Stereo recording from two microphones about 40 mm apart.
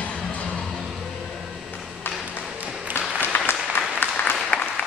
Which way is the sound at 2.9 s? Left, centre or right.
Left.